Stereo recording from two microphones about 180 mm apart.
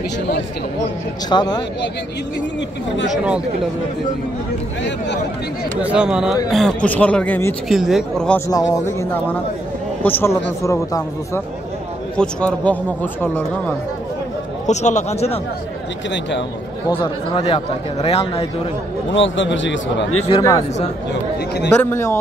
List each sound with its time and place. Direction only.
1.3 s speech: 25° left (ahead or behind)
4.8 s speech: 75° left (ahead or behind)
5.8 s speech: 5° right (ahead or behind); by 7.5 s 10° left (ahead or behind)
7.6 s speech: centre (ahead or behind)
8.5 s speech: 20° left (ahead or behind)
12.2 s speech: 5° left (ahead or behind)
14.7 s speech: 40° left (ahead or behind)
16.1 s a man's voice: 80° left
16.9 s speech: 30° left (ahead or behind)
19.1 s speech: 90° left
20.2 s speech: 25° left (ahead or behind)
21.9 s speech: 15° left (ahead or behind)